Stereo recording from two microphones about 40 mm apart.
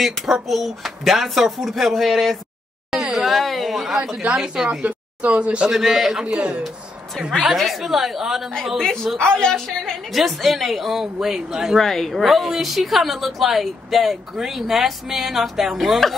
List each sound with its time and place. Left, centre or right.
0.3 s a woman's voice: centre
4.8 s speech: right
5.7 s a man's voice: centre
6.2 s a man's voice: right
7.4 s a woman's voice: centre
8.7 s a woman's voice: centre
10.1 s a woman's voice: centre
11.8 s a woman's voice: centre